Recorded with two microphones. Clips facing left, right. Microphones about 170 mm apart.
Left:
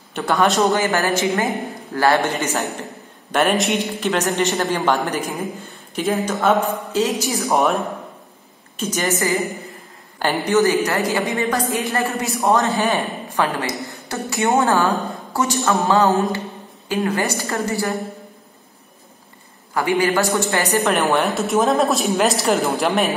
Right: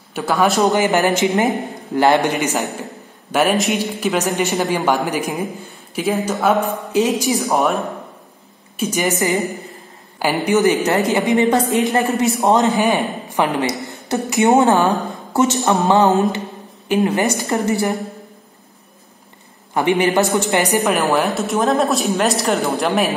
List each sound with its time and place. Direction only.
0.1 s a woman's voice: 5° right (ahead or behind)
0.7 s a woman's voice: 20° right (ahead or behind)
3.3 s a woman's voice: 5° right (ahead or behind)
4.4 s speech: 15° right (ahead or behind)
5.9 s a woman's voice: 5° right (ahead or behind)
6.9 s speech: 15° right (ahead or behind)
7.4 s a woman's voice: centre (ahead or behind)
8.7 s a woman's voice: 15° right (ahead or behind)
19.7 s a woman's voice: 20° right (ahead or behind)
20.8 s a woman's voice: centre (ahead or behind)